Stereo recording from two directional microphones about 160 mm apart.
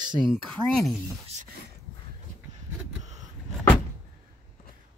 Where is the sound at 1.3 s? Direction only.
50° right (ahead or behind).